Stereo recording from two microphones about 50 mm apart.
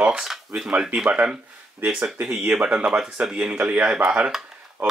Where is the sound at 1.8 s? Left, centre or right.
Centre.